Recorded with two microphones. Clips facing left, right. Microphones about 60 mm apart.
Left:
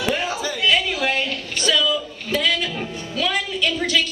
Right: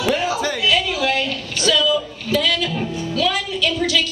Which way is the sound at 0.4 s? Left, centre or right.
Right.